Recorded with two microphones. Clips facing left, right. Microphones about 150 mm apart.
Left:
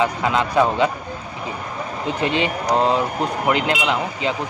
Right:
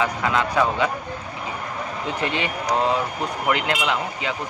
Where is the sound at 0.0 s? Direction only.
20° left (ahead or behind).